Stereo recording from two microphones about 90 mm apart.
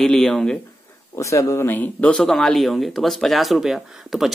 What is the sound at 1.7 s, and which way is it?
Speech, 20° left (ahead or behind).